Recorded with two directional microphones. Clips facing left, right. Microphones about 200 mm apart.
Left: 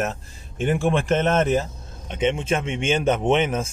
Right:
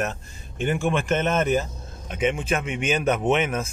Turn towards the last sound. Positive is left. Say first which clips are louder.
# left 2 dB
turn(degrees=30)  # may be behind; listen again after turning